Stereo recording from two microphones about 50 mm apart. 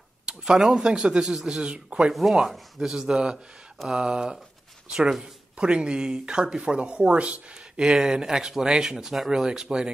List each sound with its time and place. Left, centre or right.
0.3 s speech: centre
2.1 s speech: centre; by 7.9 s right
7.9 s speech: centre